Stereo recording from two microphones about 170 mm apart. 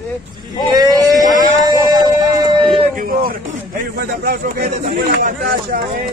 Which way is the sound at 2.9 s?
55° right (ahead or behind).